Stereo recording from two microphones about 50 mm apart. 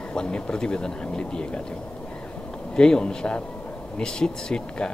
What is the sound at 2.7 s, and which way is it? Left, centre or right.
Speech, centre.